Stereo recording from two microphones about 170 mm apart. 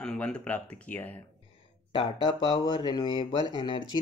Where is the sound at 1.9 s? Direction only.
30° left (ahead or behind).